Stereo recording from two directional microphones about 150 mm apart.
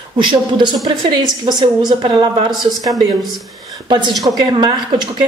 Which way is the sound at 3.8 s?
30° right (ahead or behind).